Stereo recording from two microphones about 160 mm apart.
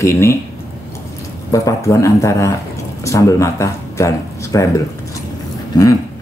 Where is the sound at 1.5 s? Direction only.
20° left (ahead or behind).